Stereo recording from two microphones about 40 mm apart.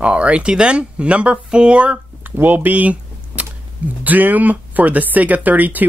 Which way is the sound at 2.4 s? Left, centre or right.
Right.